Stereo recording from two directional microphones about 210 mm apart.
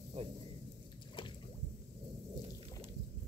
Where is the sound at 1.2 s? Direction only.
20° left (ahead or behind).